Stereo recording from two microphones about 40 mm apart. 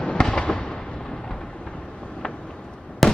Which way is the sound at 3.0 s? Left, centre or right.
Centre.